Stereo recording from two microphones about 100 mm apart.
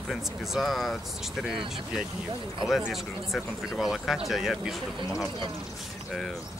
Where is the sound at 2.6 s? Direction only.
5° right (ahead or behind).